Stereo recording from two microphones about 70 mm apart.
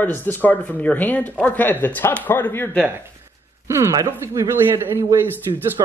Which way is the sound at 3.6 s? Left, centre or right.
Right.